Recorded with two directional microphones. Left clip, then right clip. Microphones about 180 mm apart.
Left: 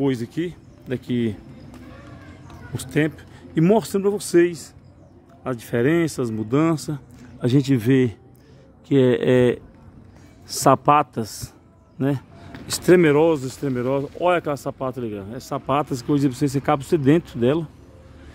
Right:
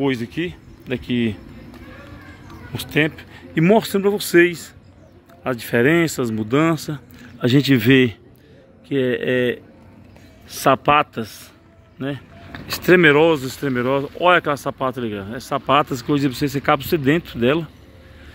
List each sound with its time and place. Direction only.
0.0 s speech: 15° left (ahead or behind)
2.7 s speech: 15° left (ahead or behind)
8.8 s speech: 40° left (ahead or behind)
10.5 s speech: 25° left (ahead or behind)
12.0 s a sound: 30° left (ahead or behind)
12.9 s speech: 10° left (ahead or behind)